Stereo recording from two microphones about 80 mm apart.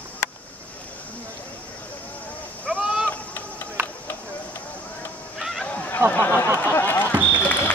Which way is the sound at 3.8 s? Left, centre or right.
Right.